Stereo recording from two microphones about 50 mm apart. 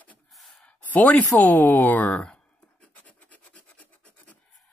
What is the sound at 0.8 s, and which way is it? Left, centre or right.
Speech, left.